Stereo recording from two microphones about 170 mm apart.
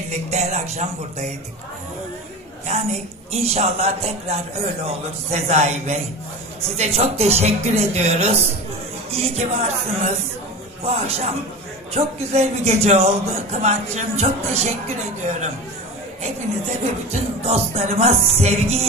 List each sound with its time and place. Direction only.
0.1 s speech: 40° right (ahead or behind)
2.6 s speech: 40° right (ahead or behind)
16.8 s speech: 40° right (ahead or behind)